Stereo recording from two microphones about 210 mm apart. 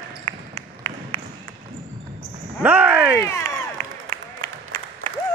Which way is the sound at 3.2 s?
15° left (ahead or behind).